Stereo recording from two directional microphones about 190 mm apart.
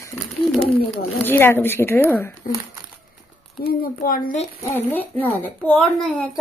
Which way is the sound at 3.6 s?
50° left (ahead or behind).